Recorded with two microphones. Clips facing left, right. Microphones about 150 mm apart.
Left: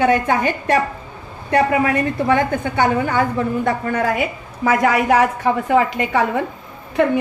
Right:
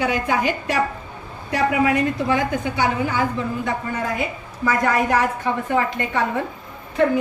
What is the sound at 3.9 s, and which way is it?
A woman's voice, 75° left (ahead or behind).